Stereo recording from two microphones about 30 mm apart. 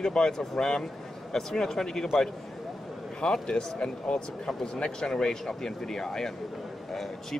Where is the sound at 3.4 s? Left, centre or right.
Left.